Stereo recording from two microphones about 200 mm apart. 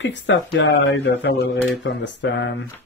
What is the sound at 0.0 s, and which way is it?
Speech, 65° left (ahead or behind).